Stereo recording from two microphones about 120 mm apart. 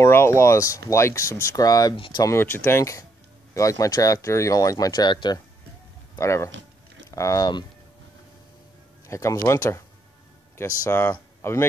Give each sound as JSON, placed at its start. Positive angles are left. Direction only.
{"t": 0.0, "sound": "speech", "side_deg": 20}
{"t": 2.0, "sound": "speech", "side_deg": 45}
{"t": 2.2, "sound": "speech", "side_deg": 20}
{"t": 6.1, "sound": "speech", "side_deg": 25}
{"t": 9.0, "sound": "speech", "side_deg": 25}
{"t": 10.9, "sound": "speech", "side_deg": 20}